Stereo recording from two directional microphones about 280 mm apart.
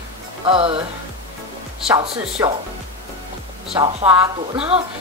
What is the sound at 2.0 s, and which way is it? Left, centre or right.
Speech, centre.